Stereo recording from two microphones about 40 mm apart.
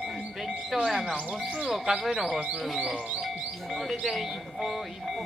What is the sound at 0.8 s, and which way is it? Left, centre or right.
Music, centre.